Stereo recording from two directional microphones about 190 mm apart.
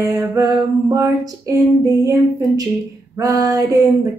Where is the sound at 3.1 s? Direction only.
20° right (ahead or behind).